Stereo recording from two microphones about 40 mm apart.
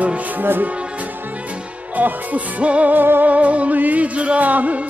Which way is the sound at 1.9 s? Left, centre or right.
Right.